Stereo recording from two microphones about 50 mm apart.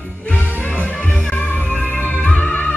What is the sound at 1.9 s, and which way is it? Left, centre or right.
Music, left.